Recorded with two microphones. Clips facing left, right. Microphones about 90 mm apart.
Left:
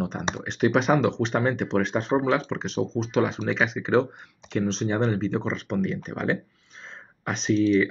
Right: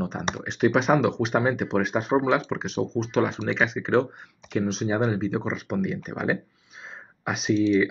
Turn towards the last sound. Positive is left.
turn(degrees=-5)  # may be behind; listen again after turning